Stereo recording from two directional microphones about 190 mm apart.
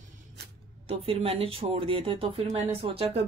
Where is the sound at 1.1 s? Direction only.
30° right (ahead or behind).